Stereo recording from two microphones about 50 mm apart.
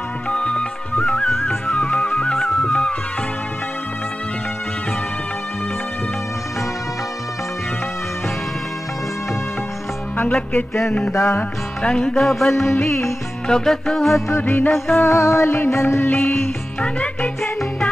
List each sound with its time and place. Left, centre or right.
0.3 s music: centre
1.2 s music: centre
1.8 s music: left
10.1 s music: left
11.8 s music: centre
12.2 s music: centre
14.3 s music: left
15.1 s music: left
15.4 s music: left
16.1 s music: left
16.8 s music: left